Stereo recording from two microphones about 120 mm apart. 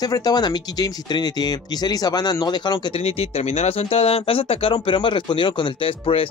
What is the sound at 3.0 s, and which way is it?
Speech, 60° left (ahead or behind).